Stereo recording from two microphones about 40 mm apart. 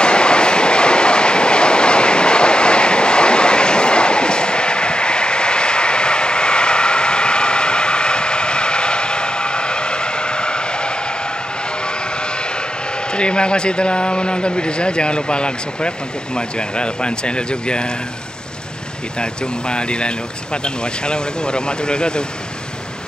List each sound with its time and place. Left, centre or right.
0.0 s train: left
11.8 s vehicle: left
13.1 s a man's voice: left
19.1 s a man's voice: left